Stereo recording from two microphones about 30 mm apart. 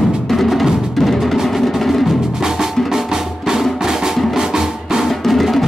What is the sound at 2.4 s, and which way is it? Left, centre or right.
Music, centre.